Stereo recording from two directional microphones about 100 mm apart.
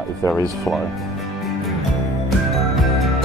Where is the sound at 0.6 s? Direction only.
Centre (ahead or behind).